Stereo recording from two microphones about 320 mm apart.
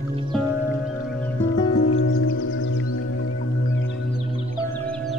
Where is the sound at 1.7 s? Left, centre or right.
Left.